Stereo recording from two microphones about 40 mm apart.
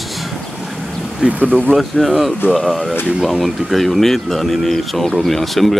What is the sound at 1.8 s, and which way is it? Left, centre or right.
Speech, centre.